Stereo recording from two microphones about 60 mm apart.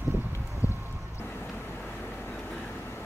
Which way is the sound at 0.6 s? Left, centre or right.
Left.